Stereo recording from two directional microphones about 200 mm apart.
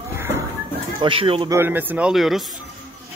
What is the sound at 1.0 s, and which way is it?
Speech, 25° right (ahead or behind).